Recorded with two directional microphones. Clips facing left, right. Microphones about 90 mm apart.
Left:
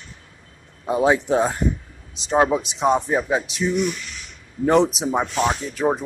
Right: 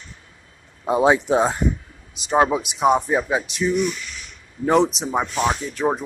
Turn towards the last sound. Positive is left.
turn(degrees=0)  # may be behind; listen again after turning